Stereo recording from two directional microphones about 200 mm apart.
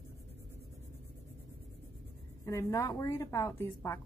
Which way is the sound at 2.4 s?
15° left (ahead or behind).